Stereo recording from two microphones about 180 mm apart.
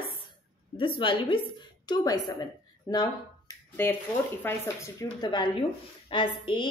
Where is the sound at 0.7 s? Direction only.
30° left (ahead or behind); by 4.8 s 10° left (ahead or behind).